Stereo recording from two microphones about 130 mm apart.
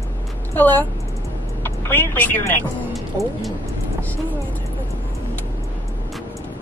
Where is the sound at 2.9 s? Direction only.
Centre (ahead or behind).